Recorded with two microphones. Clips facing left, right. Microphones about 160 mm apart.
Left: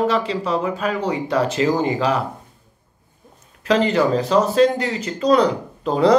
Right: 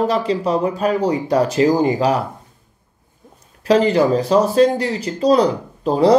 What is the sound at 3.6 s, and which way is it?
Speech, 35° right (ahead or behind).